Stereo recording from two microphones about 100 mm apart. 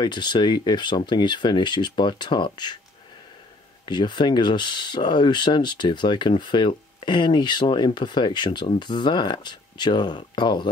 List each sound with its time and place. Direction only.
0.0 s speech: 50° left (ahead or behind)
3.8 s speech: 50° left (ahead or behind)